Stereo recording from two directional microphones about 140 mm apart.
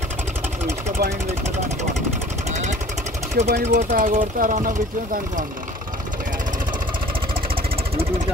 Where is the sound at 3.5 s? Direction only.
85° right.